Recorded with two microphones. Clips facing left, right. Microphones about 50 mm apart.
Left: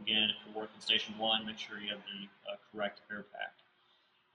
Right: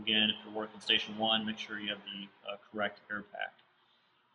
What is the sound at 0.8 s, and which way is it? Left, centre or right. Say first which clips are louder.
Speech: right 2 dB; centre.